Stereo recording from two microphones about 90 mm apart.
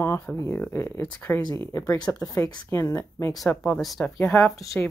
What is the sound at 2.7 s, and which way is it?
Speech, 30° left (ahead or behind).